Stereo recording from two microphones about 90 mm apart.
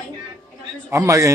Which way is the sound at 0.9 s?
35° right (ahead or behind).